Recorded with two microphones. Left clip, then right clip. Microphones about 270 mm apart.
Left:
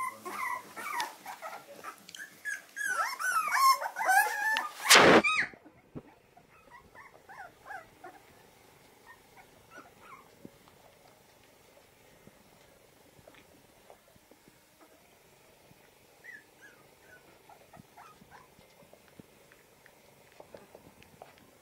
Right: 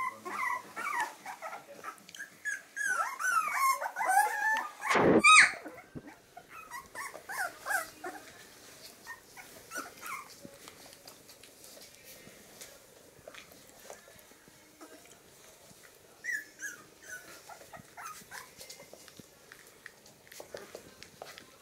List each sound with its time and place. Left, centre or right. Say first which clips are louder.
0.0 s dog: right 1 dB; centre
5.2 s a sound: right 10 dB; centre
7.2 s dog: right 11 dB; centre